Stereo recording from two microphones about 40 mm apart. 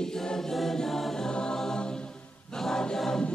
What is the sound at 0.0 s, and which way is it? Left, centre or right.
Choir, centre.